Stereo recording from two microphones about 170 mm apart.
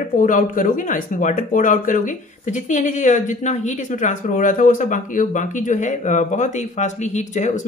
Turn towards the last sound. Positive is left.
turn(degrees=45)  # may be behind; listen again after turning